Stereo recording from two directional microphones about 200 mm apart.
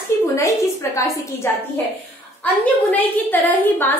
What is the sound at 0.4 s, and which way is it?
A woman's voice, 15° left (ahead or behind).